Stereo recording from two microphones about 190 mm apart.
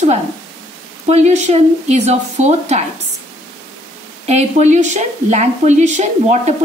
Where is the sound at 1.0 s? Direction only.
35° right (ahead or behind).